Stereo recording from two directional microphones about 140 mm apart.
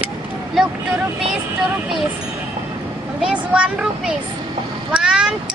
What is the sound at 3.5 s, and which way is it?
Speech, 5° right (ahead or behind).